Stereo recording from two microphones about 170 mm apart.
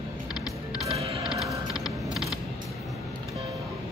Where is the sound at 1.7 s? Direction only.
Centre (ahead or behind).